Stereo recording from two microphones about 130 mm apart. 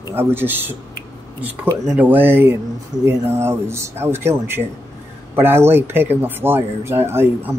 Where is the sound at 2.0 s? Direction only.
15° right (ahead or behind).